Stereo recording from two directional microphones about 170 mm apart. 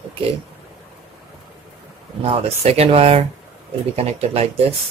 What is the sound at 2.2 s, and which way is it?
Speech, 35° right (ahead or behind).